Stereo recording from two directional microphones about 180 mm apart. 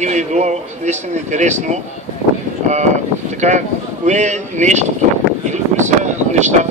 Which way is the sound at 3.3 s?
40° right (ahead or behind).